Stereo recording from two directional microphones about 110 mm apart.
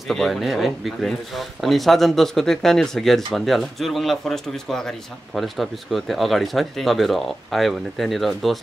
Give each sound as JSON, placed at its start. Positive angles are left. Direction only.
{"t": 0.1, "sound": "speech", "side_deg": 0}